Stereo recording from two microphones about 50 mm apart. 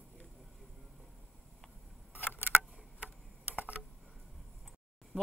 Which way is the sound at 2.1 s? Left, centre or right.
Left.